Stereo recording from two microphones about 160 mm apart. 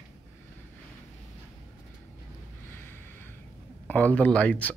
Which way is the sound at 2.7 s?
15° left (ahead or behind).